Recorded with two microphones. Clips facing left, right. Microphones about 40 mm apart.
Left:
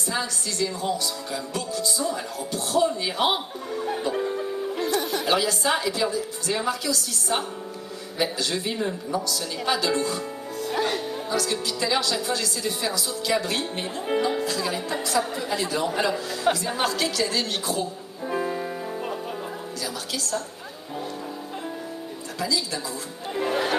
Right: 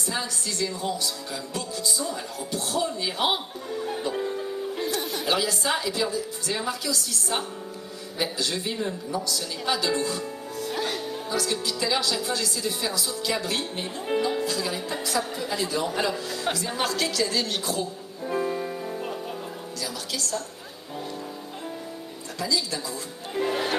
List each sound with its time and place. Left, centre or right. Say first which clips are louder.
0.0 s speech: left 2 dB; centre
10.7 s music: left 4 dB; centre
11.1 s speech: left 2 dB; centre
19.8 s music: even; centre
22.4 s speech: even; centre
23.3 s music: left 2 dB; centre